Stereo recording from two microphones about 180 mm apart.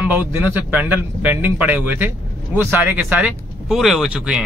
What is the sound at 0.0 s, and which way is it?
A man's voice, 10° right (ahead or behind).